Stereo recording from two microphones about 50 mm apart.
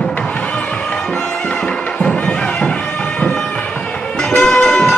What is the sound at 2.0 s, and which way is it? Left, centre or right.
Music, left.